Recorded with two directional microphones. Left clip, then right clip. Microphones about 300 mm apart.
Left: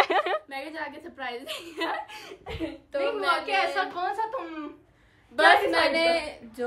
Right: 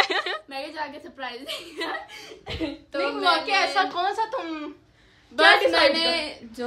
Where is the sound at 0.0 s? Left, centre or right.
Centre.